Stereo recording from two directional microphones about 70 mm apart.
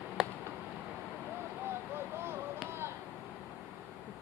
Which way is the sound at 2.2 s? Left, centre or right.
Right.